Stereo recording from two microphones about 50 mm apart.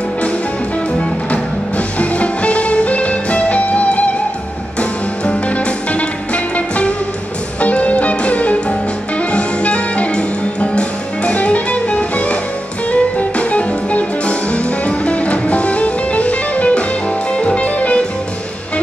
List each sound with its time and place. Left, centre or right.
1.3 s music: left
5.2 s music: left